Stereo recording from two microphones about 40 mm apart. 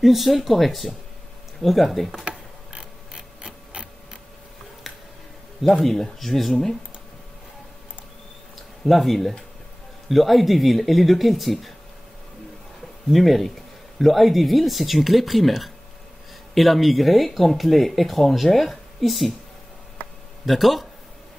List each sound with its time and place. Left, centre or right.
0.0 s speech: centre
2.2 s mechanisms: right
4.9 s music: centre
5.8 s speech: centre
8.5 s a sound: centre
10.0 s speech: centre
13.1 s speech: centre
20.4 s speech: centre